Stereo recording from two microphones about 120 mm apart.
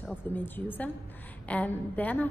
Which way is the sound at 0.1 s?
15° left (ahead or behind).